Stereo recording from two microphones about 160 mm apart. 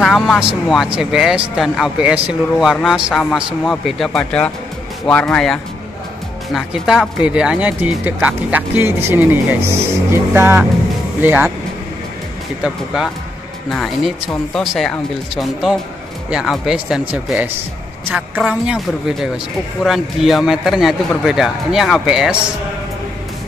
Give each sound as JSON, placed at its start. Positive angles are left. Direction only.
{"t": 0.0, "sound": "speech", "side_deg": 0}
{"t": 12.6, "sound": "speech", "side_deg": -5}